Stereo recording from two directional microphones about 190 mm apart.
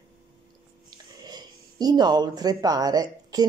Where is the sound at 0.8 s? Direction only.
20° right (ahead or behind).